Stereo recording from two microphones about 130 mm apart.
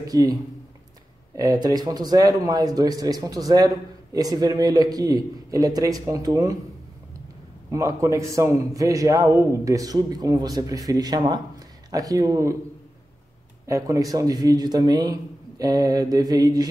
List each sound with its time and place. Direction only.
0.0 s a man's voice: 30° right (ahead or behind)
7.7 s a man's voice: 25° right (ahead or behind)
13.7 s a man's voice: 25° right (ahead or behind)